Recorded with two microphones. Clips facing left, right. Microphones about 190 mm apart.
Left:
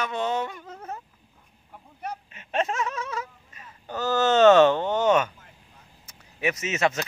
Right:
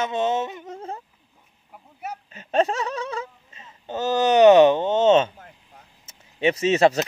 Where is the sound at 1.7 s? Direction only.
5° right (ahead or behind).